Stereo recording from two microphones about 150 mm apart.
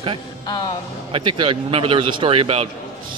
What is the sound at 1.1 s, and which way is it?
A man's voice, 35° right (ahead or behind).